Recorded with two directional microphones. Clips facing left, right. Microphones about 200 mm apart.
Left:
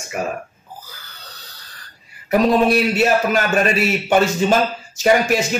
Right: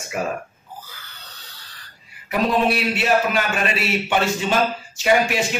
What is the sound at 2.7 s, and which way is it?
A man's voice, 45° left (ahead or behind).